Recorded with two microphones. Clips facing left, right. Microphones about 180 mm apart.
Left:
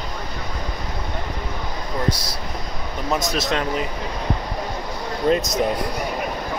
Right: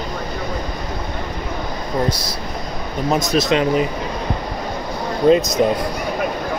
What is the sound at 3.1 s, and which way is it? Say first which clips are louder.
Speech: right 5 dB; 20° right (ahead or behind).